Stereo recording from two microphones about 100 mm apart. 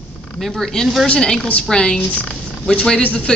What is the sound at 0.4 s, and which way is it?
Speech, centre (ahead or behind).